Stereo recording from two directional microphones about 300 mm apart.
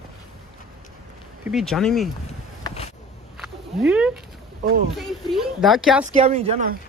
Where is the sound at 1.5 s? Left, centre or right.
Centre.